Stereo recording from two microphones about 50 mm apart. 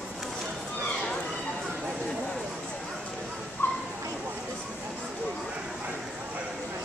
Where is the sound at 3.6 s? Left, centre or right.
Left.